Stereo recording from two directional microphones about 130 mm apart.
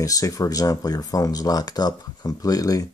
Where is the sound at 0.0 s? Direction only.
25° left (ahead or behind).